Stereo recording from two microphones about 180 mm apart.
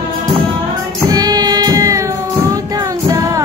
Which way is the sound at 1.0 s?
20° right (ahead or behind).